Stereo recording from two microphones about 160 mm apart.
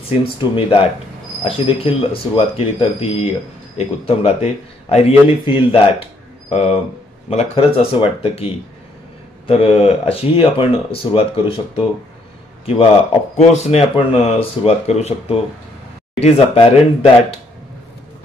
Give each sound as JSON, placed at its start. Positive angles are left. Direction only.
{"t": 0.2, "sound": "speech", "side_deg": 35}
{"t": 13.5, "sound": "speech", "side_deg": 40}